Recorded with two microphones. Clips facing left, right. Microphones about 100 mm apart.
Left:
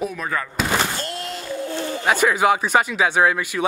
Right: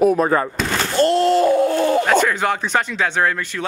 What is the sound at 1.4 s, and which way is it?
Chicken, 75° right (ahead or behind).